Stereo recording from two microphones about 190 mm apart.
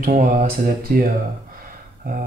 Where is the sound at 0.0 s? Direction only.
45° right (ahead or behind).